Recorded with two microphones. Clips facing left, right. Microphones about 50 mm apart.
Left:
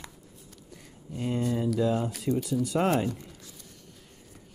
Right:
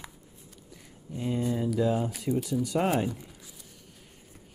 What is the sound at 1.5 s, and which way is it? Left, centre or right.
Speech, centre.